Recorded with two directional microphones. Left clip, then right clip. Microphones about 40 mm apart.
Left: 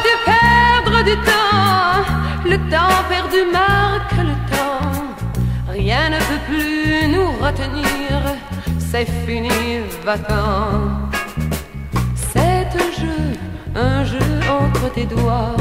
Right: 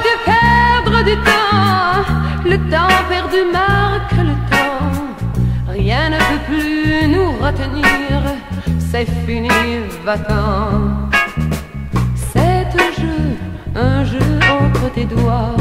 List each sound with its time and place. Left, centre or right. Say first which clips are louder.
0.0 s music: even; centre
11.9 s music: right 1 dB; centre
12.7 s music: right 4 dB; right